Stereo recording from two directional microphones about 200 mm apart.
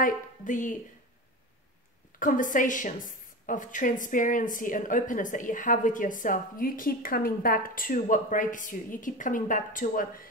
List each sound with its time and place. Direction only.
0.0 s a woman's voice: 40° left (ahead or behind)
2.1 s a woman's voice: 40° left (ahead or behind)